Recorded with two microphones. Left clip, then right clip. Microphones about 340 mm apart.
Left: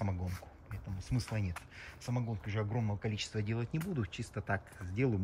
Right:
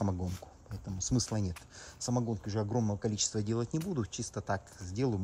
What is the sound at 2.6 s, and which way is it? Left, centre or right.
Speech, right.